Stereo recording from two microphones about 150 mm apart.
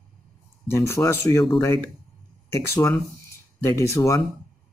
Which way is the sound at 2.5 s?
15° left (ahead or behind).